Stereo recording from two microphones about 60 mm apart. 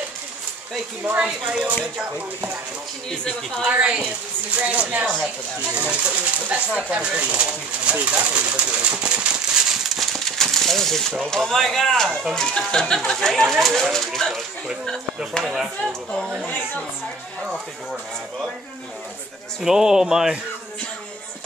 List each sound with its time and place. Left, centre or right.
1.0 s speech: right
3.1 s speech: centre
3.8 s speech: right
6.7 s bird: centre
11.2 s speech: centre
15.4 s speech: centre
16.1 s speech: centre
19.6 s speech: centre